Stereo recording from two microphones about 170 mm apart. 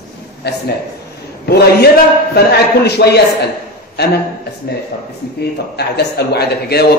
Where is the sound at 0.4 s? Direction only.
75° left (ahead or behind).